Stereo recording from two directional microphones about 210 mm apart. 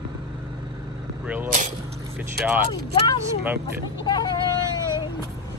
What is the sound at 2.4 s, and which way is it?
Speech, 10° right (ahead or behind).